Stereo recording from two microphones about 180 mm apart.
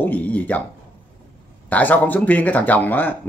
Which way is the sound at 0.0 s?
10° left (ahead or behind).